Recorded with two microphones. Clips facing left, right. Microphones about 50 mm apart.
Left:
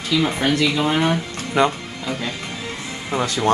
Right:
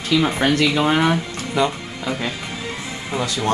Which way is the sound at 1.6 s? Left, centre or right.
Left.